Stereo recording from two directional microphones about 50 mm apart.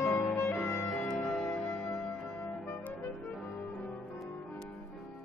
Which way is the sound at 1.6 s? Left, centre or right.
Left.